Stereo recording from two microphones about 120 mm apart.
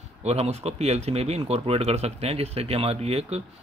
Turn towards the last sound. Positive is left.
turn(degrees=-60)  # may be behind; listen again after turning